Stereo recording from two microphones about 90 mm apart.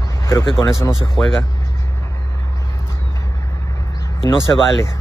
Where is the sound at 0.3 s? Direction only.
30° left (ahead or behind).